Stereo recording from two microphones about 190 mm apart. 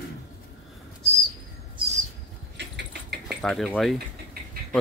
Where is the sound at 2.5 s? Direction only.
60° right (ahead or behind).